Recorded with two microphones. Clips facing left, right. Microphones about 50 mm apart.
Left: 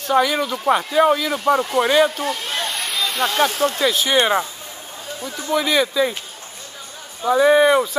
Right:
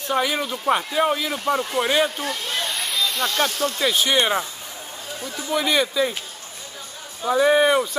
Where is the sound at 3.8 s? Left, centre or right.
Centre.